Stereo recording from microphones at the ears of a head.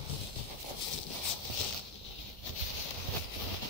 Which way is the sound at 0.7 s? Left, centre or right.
Left.